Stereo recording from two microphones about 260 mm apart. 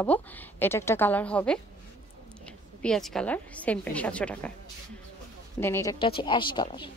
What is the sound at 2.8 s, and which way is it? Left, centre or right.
A woman's voice, centre.